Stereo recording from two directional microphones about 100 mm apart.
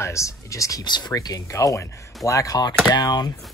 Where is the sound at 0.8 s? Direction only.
45° left (ahead or behind).